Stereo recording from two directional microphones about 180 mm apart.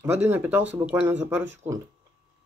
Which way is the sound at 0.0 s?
15° right (ahead or behind).